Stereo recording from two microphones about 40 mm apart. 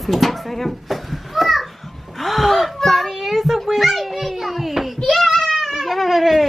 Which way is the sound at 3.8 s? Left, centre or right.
Centre.